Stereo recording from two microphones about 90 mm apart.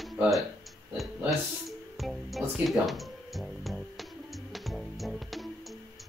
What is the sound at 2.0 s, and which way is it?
Music, centre (ahead or behind).